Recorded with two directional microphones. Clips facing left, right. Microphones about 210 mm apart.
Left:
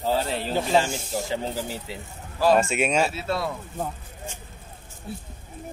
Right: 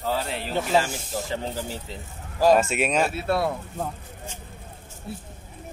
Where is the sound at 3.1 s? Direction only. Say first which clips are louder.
Right 3 dB; 55° right (ahead or behind).